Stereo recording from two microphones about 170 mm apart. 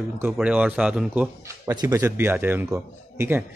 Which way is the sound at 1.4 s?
20° right (ahead or behind).